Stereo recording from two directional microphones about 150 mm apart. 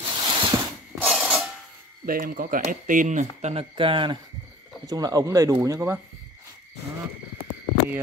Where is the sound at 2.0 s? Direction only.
70° right (ahead or behind); by 5.9 s 20° right (ahead or behind).